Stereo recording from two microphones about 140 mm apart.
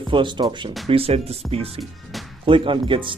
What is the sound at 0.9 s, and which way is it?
Speech, 45° right (ahead or behind).